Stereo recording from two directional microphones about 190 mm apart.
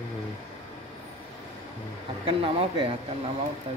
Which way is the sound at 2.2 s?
30° right (ahead or behind).